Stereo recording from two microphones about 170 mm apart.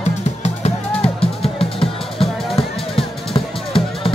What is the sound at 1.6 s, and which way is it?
Music, 35° left (ahead or behind).